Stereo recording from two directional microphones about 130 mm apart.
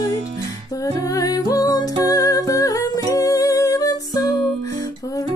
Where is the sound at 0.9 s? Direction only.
25° left (ahead or behind).